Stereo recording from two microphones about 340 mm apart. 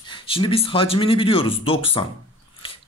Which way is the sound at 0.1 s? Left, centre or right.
Centre.